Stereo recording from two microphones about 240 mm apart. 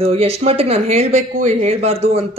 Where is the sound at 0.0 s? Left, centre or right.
Right.